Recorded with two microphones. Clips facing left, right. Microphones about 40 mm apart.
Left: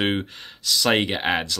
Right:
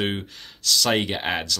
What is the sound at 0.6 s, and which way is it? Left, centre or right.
Speech, centre.